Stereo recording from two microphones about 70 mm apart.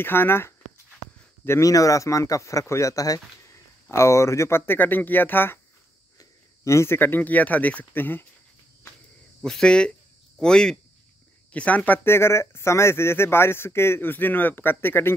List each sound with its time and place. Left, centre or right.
0.0 s speech: left
1.6 s speech: left
4.7 s speech: left
6.1 s speech: left
9.4 s speech: centre
11.5 s speech: left